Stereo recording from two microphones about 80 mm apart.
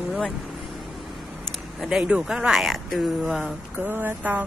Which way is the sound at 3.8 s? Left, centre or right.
Right.